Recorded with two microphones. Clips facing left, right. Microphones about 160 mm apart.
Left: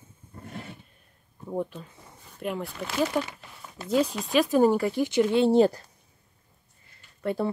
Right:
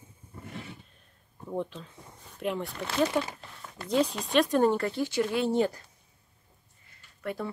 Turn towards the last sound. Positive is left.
turn(degrees=30)  # may be behind; listen again after turning